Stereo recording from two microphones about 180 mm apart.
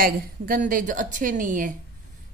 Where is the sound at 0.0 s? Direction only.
50° right (ahead or behind).